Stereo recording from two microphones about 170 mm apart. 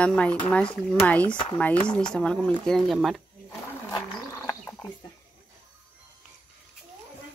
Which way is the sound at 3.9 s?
20° left (ahead or behind).